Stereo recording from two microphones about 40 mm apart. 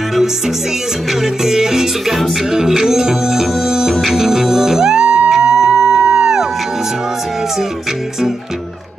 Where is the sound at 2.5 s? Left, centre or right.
Centre.